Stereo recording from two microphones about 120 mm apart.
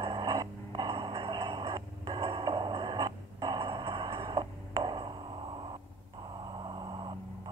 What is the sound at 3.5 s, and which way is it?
Music, 45° right (ahead or behind).